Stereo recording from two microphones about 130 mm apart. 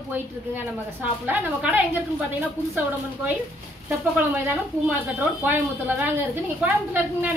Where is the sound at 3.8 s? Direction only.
15° right (ahead or behind).